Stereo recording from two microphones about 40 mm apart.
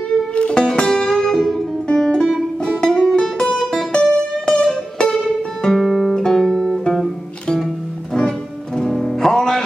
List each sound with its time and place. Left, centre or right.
0.1 s music: left
0.7 s music: centre
8.1 s music: centre